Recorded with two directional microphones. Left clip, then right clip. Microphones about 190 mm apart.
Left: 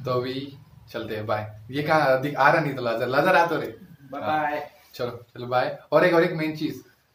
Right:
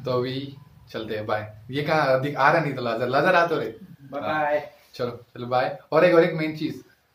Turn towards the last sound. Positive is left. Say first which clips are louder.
# right 2 dB
turn(degrees=5)  # may be behind; listen again after turning